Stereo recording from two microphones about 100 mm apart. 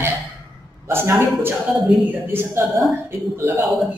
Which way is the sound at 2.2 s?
25° right (ahead or behind).